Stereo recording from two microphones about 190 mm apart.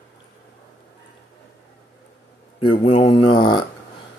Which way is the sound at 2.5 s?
25° left (ahead or behind).